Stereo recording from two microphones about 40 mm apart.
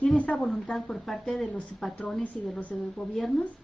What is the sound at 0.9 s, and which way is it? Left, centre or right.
A woman's voice, centre.